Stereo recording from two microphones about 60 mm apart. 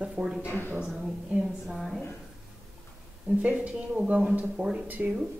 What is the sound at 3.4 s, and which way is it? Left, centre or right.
Speech, centre.